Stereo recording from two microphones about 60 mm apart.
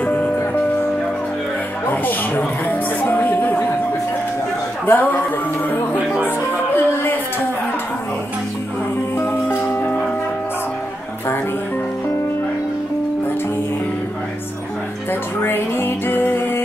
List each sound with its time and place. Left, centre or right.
0.0 s music: left
1.9 s music: left
4.8 s a man's voice: left
6.2 s music: left
9.1 s music: left
9.6 s music: left
15.4 s music: left